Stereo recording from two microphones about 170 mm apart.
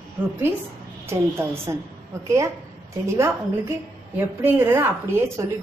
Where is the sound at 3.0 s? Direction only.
15° right (ahead or behind).